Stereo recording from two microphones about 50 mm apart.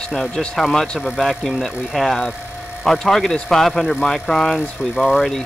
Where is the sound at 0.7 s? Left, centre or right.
Centre.